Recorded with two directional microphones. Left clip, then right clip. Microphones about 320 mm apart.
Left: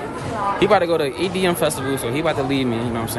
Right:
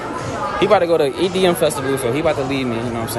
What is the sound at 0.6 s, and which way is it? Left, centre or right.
Speech, centre.